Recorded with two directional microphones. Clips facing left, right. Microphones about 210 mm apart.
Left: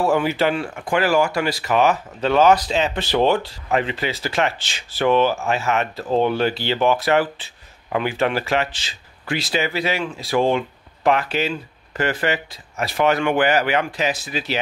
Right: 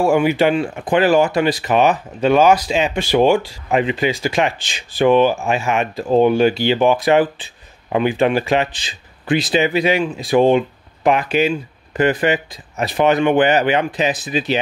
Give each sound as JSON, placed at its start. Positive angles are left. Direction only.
{"t": 0.0, "sound": "speech", "side_deg": -15}